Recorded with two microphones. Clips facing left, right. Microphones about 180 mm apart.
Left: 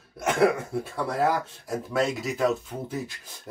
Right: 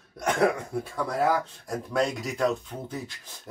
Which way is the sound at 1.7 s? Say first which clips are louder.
Left 1 dB; 5° left (ahead or behind).